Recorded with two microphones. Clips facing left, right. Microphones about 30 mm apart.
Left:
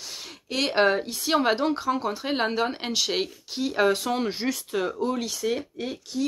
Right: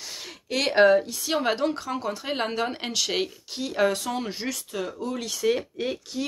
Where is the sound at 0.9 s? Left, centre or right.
Left.